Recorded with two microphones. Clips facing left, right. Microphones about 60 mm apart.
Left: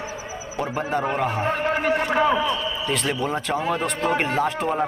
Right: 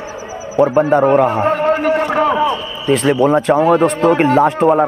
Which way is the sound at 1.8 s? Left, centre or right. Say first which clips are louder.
Right 6 dB; right.